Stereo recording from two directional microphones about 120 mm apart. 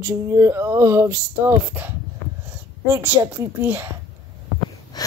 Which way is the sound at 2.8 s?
20° right (ahead or behind).